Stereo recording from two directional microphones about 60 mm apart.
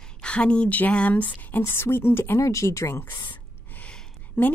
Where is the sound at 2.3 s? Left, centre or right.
Left.